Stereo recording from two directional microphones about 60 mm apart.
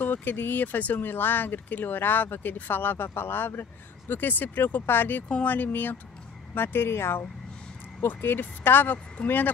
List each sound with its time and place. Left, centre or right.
0.0 s speech: left